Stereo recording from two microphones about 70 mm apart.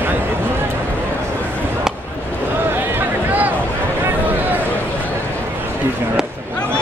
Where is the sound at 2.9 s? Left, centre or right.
Right.